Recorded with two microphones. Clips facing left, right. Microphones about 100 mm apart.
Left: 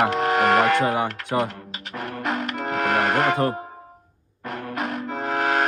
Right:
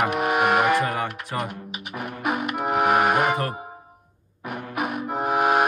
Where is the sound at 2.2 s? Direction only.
10° right (ahead or behind).